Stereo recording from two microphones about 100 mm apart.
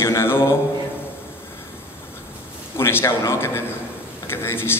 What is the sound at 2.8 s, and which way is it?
A man's voice, 25° left (ahead or behind).